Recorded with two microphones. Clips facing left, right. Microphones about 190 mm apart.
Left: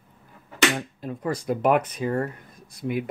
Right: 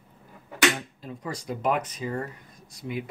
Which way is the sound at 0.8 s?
55° left (ahead or behind).